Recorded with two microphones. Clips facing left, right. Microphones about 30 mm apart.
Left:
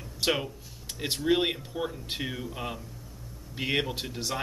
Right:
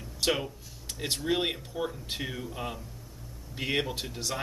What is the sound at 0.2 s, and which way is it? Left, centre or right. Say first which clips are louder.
Speech: left 1 dB; centre.